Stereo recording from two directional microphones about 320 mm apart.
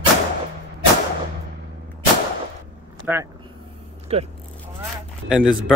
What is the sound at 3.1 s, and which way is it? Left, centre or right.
Speech, centre.